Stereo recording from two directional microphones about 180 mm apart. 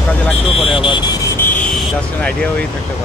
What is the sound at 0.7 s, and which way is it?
Vehicle, 25° left (ahead or behind).